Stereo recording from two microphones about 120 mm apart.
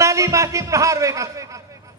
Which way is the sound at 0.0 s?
25° right (ahead or behind).